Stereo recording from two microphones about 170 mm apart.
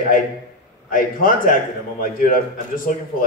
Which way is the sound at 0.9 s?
55° left (ahead or behind).